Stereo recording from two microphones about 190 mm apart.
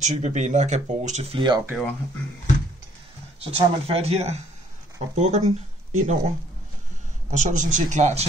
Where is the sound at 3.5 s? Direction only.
30° right (ahead or behind).